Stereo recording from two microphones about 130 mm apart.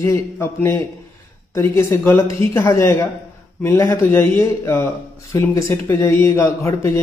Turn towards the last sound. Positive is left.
turn(degrees=20)  # may be behind; listen again after turning